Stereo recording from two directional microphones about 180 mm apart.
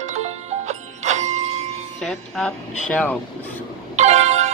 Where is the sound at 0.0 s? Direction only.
40° right (ahead or behind).